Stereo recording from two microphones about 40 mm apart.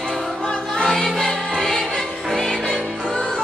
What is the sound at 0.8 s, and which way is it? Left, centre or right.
Music, centre.